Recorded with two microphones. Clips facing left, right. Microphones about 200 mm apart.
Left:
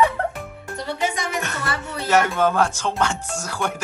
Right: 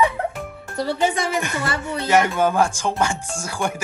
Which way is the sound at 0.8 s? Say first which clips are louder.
Right 4 dB; 30° right (ahead or behind).